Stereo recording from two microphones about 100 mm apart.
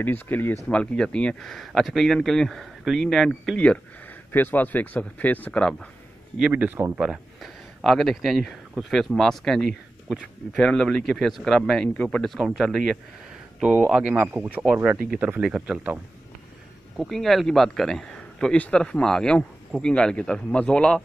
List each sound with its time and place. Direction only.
0.0 s speech: 20° left (ahead or behind)
0.7 s speech: 10° left (ahead or behind)
3.5 s speech: 15° left (ahead or behind)
6.5 s speech: 20° right (ahead or behind)
7.0 s speech: centre (ahead or behind)
13.6 s speech: 20° right (ahead or behind)
16.9 s speech: centre (ahead or behind)